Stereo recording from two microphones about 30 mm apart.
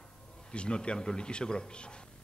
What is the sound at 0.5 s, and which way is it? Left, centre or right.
A man's voice, left.